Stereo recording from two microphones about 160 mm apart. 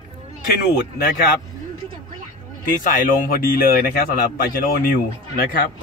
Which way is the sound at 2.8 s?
55° left (ahead or behind).